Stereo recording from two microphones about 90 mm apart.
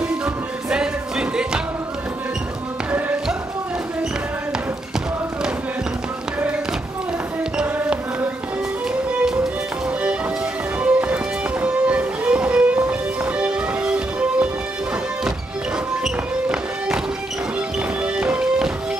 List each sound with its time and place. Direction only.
0.0 s music: 10° right (ahead or behind)
7.5 s music: 10° right (ahead or behind)
9.2 s music: 5° right (ahead or behind)
10.8 s music: 15° right (ahead or behind)
16.0 s music: 10° right (ahead or behind)